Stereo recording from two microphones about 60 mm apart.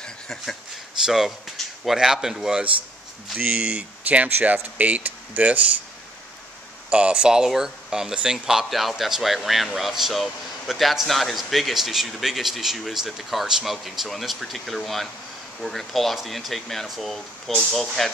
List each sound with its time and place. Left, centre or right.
0.0 s a sound: centre
1.0 s speech: centre
3.3 s speech: right
6.9 s speech: centre